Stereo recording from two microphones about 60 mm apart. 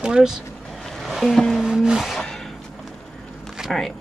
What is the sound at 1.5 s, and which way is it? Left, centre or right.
Speech, centre.